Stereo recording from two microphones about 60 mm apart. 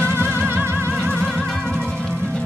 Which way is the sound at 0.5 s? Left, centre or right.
Right.